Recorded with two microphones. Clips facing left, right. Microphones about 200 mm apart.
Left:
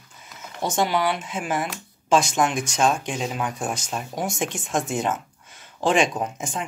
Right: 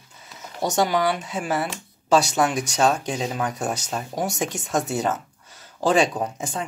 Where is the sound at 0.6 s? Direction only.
40° right (ahead or behind).